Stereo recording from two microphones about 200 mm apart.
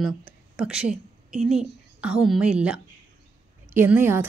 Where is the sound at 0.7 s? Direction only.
5° right (ahead or behind).